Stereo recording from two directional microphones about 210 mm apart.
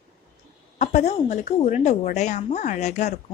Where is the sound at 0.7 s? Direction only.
30° left (ahead or behind).